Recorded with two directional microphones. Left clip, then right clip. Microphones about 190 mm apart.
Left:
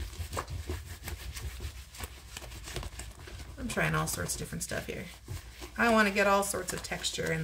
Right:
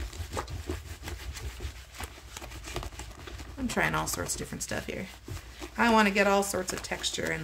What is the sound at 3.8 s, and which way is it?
Speech, 55° right (ahead or behind).